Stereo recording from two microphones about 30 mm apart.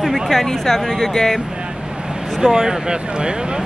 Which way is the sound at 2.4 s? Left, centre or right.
Centre.